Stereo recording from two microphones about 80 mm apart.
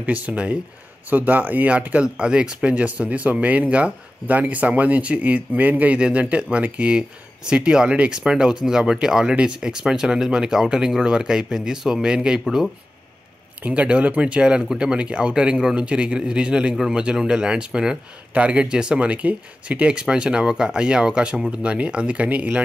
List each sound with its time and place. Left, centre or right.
0.0 s speech: centre